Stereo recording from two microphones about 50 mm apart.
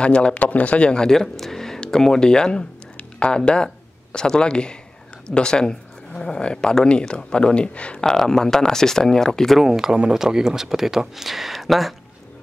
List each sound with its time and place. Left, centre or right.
0.0 s speech: left
8.0 s speech: centre
9.6 s speech: centre